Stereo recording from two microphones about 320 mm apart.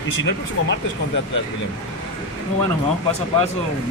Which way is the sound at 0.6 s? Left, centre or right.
Left.